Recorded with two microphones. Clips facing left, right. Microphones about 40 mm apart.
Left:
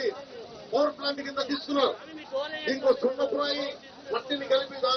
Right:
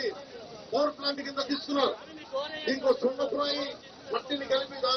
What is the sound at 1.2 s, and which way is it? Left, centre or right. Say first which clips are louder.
A man's voice: left 2 dB; centre.